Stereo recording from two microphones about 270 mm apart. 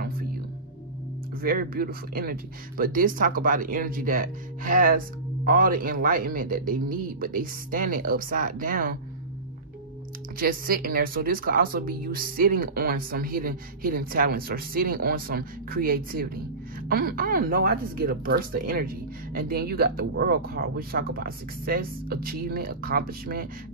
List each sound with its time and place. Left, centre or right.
1.4 s speech: right
10.4 s speech: right